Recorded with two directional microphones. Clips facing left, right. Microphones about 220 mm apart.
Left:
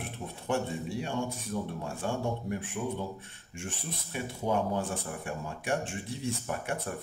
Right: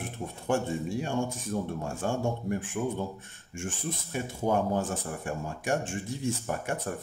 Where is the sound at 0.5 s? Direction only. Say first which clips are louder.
Right 3 dB; 45° right (ahead or behind).